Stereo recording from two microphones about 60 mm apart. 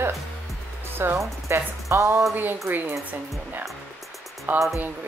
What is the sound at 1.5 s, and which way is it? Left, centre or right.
Speech, right.